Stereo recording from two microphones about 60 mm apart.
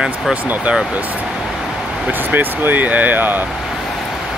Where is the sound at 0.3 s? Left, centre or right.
Right.